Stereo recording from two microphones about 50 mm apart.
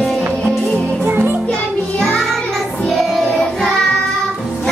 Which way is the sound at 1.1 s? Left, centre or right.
Right.